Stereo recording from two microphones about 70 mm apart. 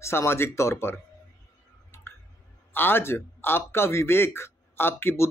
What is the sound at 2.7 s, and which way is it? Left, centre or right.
Speech, left.